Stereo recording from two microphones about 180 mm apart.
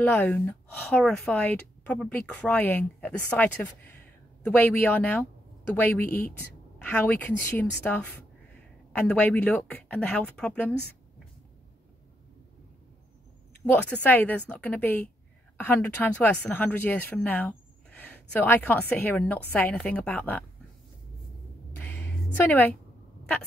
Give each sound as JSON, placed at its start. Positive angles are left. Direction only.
{"t": 0.1, "sound": "speech", "side_deg": 10}
{"t": 14.0, "sound": "speech", "side_deg": 10}
{"t": 21.7, "sound": "a sound", "side_deg": 10}